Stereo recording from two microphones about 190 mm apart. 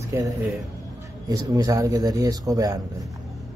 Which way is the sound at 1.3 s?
20° right (ahead or behind).